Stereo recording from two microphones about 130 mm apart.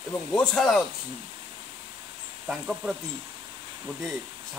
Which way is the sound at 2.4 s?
5° right (ahead or behind).